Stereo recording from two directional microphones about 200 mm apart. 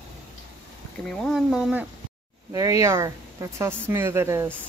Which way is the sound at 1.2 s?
Centre (ahead or behind).